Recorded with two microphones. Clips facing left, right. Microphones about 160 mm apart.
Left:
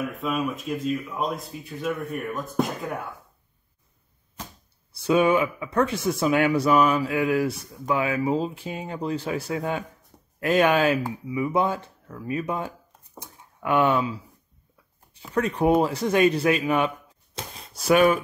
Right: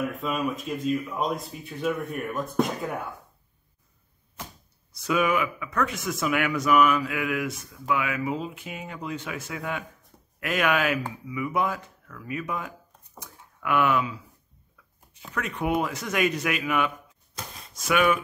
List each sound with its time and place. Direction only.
0.0 s speech: centre (ahead or behind)
4.9 s speech: 30° left (ahead or behind)
15.3 s speech: 35° left (ahead or behind)